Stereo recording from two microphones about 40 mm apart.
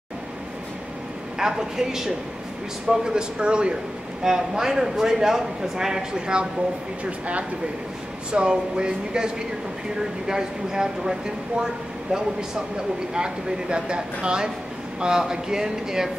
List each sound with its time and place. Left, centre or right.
1.4 s speech: centre
4.2 s speech: centre
7.1 s speech: right; by 11.6 s centre
13.1 s speech: right